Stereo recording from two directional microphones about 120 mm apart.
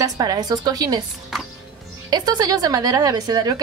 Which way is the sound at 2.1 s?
35° right (ahead or behind).